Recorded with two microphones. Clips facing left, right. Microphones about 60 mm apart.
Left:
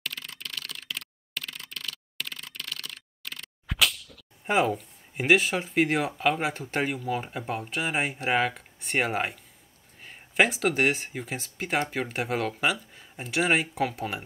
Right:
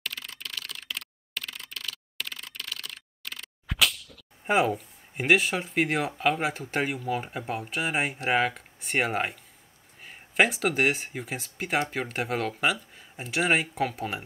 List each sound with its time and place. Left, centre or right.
0.0 s computer keyboard: centre
10.0 s speech: centre